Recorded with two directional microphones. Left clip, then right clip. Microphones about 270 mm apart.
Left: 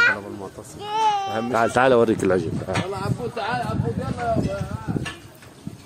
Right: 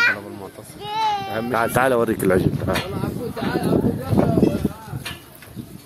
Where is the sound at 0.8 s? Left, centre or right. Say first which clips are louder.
Left 1 dB; left.